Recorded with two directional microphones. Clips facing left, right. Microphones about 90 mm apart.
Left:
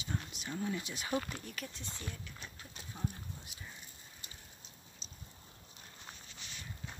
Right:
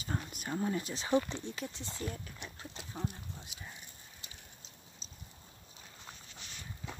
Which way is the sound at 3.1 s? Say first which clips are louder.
Right 1 dB; 90° right.